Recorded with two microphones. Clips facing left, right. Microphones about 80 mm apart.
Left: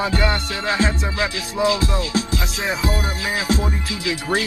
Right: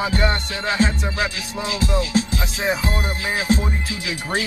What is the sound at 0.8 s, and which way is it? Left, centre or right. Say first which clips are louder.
Music: even; left.